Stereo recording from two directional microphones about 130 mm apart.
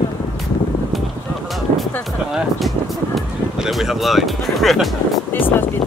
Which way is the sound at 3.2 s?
Centre (ahead or behind).